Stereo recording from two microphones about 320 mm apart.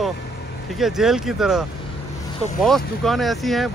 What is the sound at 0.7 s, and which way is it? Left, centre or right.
Speech, centre.